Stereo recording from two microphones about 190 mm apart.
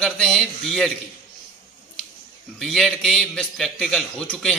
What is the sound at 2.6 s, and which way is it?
A man's voice, centre (ahead or behind).